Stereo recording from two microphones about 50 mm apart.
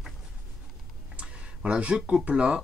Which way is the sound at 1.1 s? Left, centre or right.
Right.